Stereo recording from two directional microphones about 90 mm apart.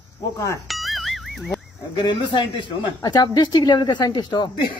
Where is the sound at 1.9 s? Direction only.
60° left (ahead or behind).